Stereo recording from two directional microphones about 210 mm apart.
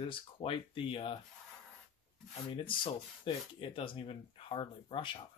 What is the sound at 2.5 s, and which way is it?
Speech, 25° left (ahead or behind).